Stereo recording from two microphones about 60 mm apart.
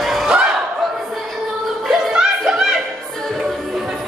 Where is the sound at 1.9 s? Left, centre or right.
Centre.